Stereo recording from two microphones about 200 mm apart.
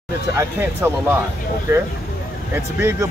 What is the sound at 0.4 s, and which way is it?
Speech, 10° right (ahead or behind).